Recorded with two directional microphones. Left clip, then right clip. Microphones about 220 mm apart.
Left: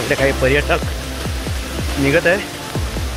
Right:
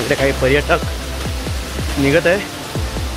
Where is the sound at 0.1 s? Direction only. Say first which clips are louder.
Even; 15° right (ahead or behind).